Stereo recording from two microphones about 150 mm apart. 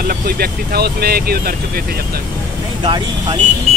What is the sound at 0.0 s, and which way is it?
Speech, 80° right.